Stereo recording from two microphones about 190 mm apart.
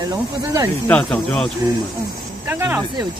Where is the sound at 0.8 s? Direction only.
5° left (ahead or behind).